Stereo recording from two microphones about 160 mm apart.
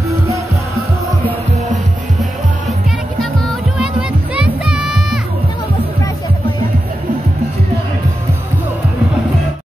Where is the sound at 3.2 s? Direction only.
Centre (ahead or behind).